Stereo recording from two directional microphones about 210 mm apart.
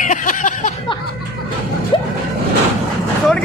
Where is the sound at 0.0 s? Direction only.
40° left (ahead or behind).